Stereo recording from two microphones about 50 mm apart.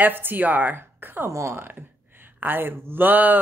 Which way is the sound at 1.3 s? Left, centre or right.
Right.